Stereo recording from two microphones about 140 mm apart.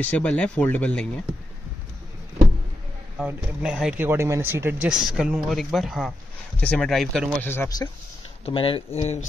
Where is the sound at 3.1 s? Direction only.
5° right (ahead or behind).